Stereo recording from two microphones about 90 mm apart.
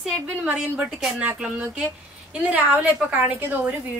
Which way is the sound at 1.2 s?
15° right (ahead or behind).